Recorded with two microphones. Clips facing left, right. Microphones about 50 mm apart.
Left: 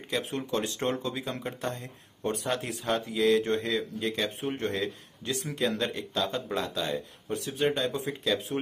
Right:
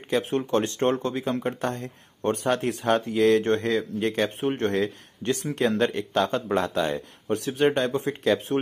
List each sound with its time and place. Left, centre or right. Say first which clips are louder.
0.5 s speech: right 6 dB; right
6.1 s speech: right 6 dB; right